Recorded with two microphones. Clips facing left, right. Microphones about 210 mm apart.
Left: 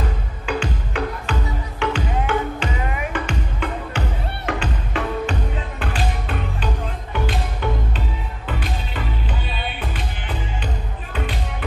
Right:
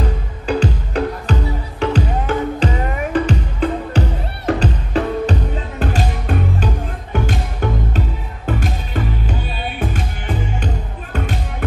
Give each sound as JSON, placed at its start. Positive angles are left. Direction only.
{"t": 0.5, "sound": "music", "side_deg": -40}